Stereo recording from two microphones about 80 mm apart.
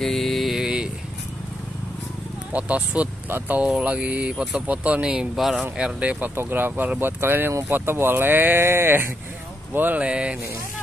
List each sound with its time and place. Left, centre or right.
0.0 s a sound: centre
2.5 s speech: centre
10.0 s speech: centre